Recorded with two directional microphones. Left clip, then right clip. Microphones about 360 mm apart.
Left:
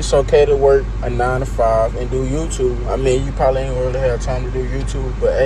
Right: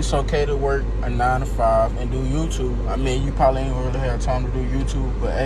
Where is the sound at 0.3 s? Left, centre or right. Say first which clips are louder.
Left 12 dB; centre.